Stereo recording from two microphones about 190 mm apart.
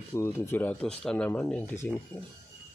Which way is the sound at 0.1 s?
15° left (ahead or behind).